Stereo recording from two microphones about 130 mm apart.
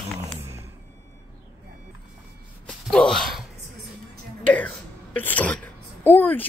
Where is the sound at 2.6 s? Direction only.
5° left (ahead or behind).